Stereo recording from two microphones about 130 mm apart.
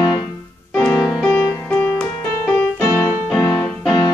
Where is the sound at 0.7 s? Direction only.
5° left (ahead or behind).